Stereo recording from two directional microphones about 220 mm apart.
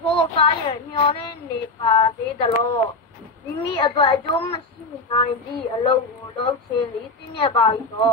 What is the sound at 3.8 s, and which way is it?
Female singing, 20° left (ahead or behind).